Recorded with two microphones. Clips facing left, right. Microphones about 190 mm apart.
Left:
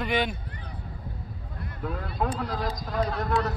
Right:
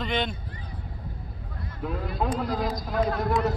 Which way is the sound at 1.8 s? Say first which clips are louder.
Right 1 dB; 5° right (ahead or behind).